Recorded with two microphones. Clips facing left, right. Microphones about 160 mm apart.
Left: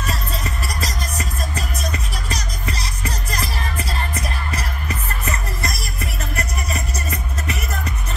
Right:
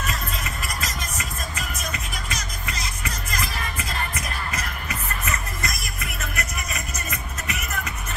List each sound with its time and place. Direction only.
0.0 s music: 35° left (ahead or behind)